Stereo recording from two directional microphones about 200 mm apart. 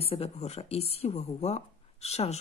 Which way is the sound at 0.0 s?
30° left (ahead or behind).